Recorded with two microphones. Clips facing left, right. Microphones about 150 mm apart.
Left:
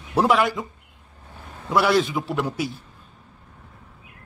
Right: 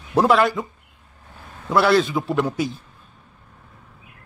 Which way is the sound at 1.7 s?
15° left (ahead or behind).